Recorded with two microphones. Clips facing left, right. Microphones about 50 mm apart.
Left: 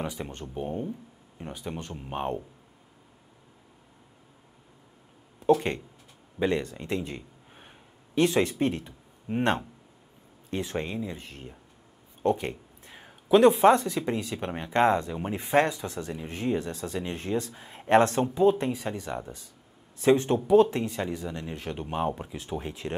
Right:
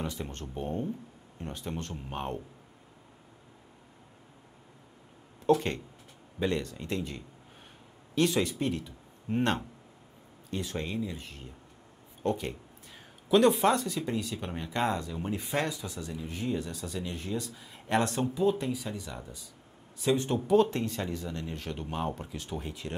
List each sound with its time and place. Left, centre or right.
0.0 s speech: centre
6.4 s speech: left
20.7 s speech: left